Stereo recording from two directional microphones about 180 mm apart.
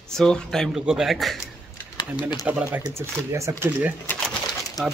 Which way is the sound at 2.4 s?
10° right (ahead or behind).